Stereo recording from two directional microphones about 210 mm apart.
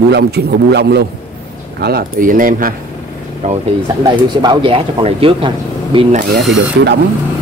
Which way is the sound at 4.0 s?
20° right (ahead or behind).